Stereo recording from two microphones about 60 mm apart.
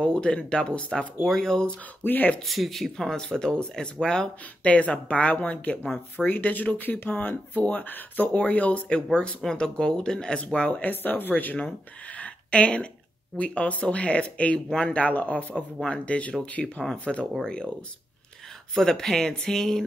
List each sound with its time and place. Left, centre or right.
0.0 s speech: centre
2.0 s speech: left
2.4 s speech: centre; by 8.8 s left
8.8 s speech: centre
10.6 s speech: left
12.2 s a sound: centre
13.4 s speech: left
18.8 s speech: centre